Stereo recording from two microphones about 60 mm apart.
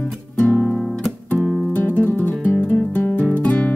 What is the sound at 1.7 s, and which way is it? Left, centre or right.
Music, left.